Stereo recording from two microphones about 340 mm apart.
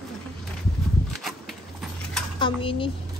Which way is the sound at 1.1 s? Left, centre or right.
Centre.